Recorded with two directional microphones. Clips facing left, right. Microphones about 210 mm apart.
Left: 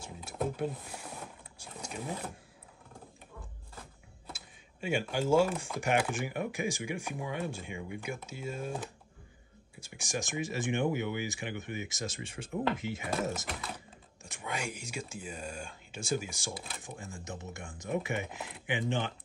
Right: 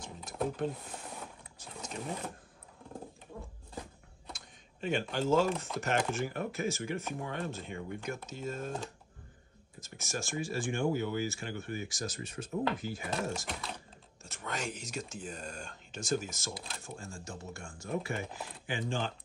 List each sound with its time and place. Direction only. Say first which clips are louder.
0.0 s a sound: even; 10° left (ahead or behind)
1.6 s wild animals: even; 10° left (ahead or behind)
4.3 s a sound: left 1 dB; 10° left (ahead or behind)
5.8 s speech: left 3 dB; 15° left (ahead or behind)
13.5 s speech: left 1 dB; centre (ahead or behind)
14.2 s speech: even; 10° left (ahead or behind)